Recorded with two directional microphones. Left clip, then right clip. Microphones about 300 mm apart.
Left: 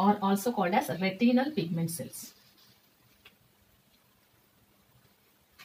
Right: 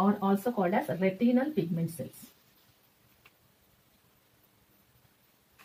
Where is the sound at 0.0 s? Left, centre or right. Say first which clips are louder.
Left 2 dB; centre.